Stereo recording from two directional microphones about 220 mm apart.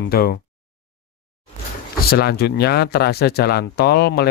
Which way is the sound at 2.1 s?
45° left (ahead or behind).